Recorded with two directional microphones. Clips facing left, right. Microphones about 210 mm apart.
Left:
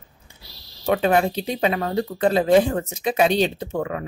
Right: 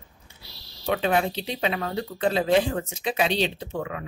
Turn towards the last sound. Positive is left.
turn(degrees=45)  # may be behind; listen again after turning